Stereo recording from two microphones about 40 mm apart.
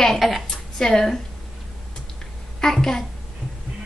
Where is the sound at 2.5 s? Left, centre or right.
Centre.